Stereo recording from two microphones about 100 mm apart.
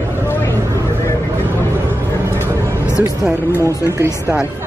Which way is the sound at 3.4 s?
25° left (ahead or behind).